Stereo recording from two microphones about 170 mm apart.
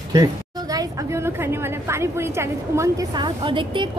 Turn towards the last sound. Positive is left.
turn(degrees=-30)  # may be behind; listen again after turning